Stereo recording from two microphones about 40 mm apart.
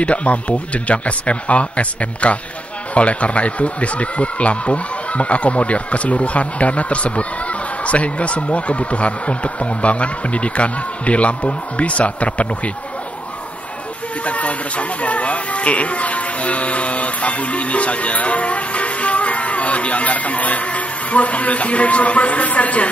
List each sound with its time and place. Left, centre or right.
0.0 s speech: left
14.2 s speech: left